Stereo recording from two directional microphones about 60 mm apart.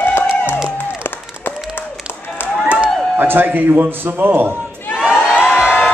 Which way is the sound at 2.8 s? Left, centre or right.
Right.